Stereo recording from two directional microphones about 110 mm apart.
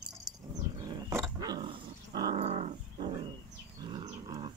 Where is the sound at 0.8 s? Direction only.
40° right (ahead or behind).